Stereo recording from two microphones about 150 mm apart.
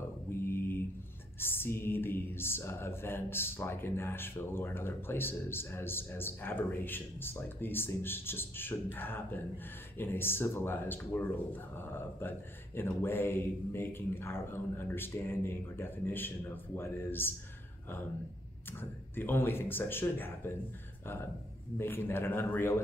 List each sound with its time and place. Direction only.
0.5 s mantra: 15° left (ahead or behind)
1.4 s speech: 15° left (ahead or behind)
18.7 s speech: 15° left (ahead or behind)
21.7 s speech: 15° left (ahead or behind)